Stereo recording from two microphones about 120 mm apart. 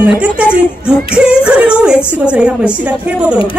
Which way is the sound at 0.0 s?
10° right (ahead or behind).